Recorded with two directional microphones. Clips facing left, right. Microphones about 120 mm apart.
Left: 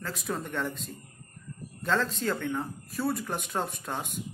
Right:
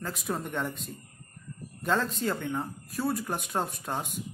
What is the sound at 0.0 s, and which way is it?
A man's voice, 15° right (ahead or behind).